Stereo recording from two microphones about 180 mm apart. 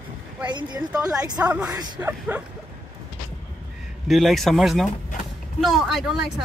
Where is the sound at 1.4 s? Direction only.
10° right (ahead or behind).